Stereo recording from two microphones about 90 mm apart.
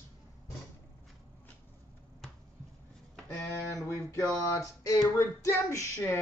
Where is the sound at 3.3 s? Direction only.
25° left (ahead or behind).